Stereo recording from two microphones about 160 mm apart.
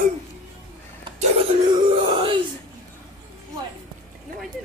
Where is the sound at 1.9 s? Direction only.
30° right (ahead or behind).